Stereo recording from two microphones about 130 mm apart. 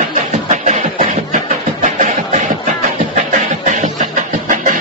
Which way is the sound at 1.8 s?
70° right (ahead or behind).